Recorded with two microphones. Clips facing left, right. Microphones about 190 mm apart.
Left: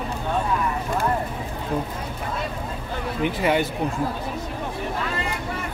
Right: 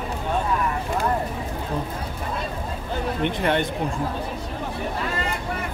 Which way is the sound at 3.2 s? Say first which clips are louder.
Left 2 dB; 5° left (ahead or behind).